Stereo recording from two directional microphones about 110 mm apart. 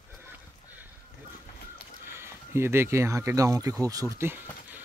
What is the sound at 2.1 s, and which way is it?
Speech, 25° right (ahead or behind).